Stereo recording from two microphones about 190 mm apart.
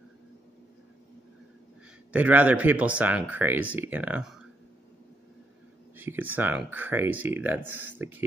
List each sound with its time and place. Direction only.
2.1 s speech: 5° right (ahead or behind)
5.9 s speech: 10° right (ahead or behind)